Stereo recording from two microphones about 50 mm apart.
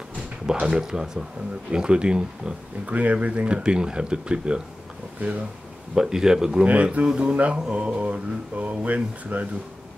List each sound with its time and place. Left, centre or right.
0.5 s speech: centre
2.9 s speech: right
5.9 s speech: centre
6.6 s speech: right